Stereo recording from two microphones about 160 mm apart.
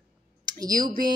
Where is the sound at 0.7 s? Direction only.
25° right (ahead or behind).